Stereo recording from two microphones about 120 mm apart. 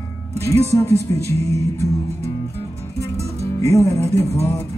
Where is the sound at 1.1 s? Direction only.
60° right (ahead or behind).